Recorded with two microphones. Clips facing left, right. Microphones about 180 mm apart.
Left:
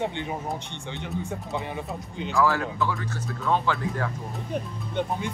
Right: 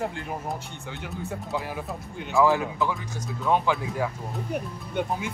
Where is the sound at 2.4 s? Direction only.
15° right (ahead or behind).